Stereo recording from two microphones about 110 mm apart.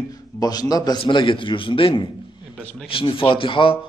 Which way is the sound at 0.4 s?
35° left (ahead or behind).